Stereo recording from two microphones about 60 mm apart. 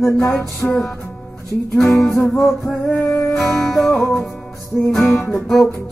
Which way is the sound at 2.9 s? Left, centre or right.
Left.